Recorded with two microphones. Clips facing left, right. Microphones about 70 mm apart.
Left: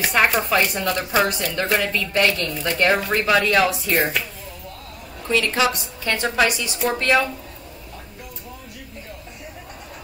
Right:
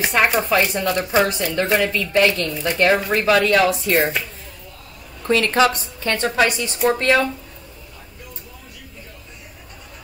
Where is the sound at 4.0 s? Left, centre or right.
Centre.